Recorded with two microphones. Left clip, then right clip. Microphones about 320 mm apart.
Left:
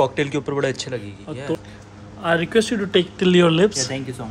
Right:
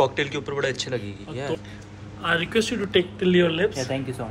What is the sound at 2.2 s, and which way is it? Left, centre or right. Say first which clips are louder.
A man's voice: left 4 dB; left.